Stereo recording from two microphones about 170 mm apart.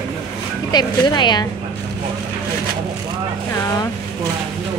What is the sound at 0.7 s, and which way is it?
Speech, 25° left (ahead or behind).